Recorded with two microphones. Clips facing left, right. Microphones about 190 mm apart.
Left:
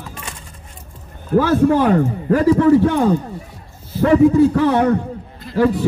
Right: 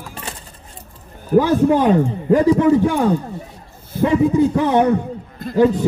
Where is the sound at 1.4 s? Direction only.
15° right (ahead or behind).